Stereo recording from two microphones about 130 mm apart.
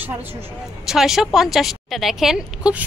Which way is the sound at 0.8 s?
5° right (ahead or behind).